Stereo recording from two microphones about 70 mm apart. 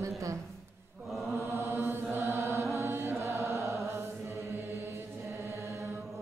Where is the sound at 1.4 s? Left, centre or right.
Right.